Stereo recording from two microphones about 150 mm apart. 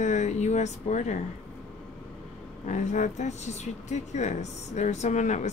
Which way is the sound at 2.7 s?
55° left (ahead or behind).